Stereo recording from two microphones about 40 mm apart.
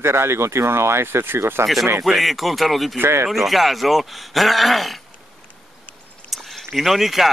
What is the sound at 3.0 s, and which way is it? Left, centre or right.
Speech, right.